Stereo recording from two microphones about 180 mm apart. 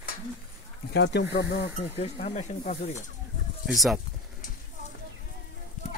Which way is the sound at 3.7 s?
Centre (ahead or behind).